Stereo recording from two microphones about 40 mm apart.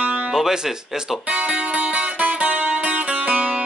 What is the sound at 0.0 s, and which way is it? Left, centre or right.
Music, right.